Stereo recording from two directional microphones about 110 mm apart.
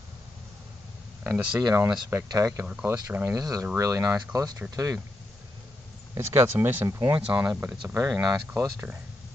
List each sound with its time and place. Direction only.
1.2 s speech: 15° right (ahead or behind)
2.0 s speech: 25° right (ahead or behind)
2.6 s speech: 15° right (ahead or behind)
3.3 s speech: 35° right (ahead or behind)
6.1 s speech: 25° right (ahead or behind)
7.9 s speech: 25° right (ahead or behind)